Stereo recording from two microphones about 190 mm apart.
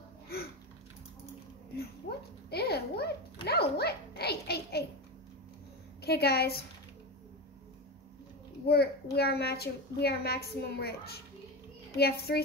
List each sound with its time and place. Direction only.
1.8 s a sound: 55° left (ahead or behind)
6.0 s a woman's voice: 55° left (ahead or behind)
8.6 s a child's voice: 55° left (ahead or behind)